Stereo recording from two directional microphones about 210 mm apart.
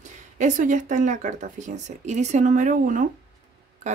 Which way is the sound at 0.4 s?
35° right (ahead or behind).